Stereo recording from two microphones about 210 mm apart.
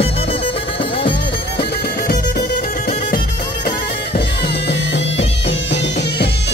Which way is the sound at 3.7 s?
50° left (ahead or behind).